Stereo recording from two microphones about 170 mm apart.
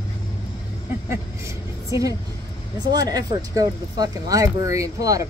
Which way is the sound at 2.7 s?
20° right (ahead or behind).